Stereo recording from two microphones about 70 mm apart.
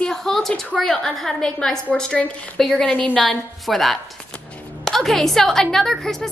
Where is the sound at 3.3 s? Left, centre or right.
Centre.